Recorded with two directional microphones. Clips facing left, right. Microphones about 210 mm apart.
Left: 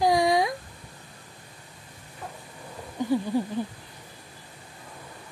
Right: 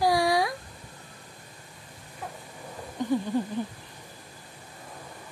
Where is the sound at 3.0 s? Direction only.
10° left (ahead or behind).